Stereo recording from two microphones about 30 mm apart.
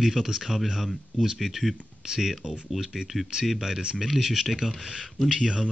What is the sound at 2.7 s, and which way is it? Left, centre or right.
Speech, centre.